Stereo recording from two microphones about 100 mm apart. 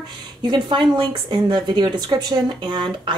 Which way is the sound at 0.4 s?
50° right (ahead or behind).